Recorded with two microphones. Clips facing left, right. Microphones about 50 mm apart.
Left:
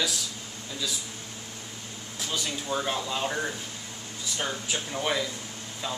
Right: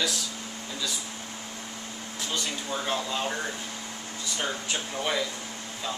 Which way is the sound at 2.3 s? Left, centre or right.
Centre.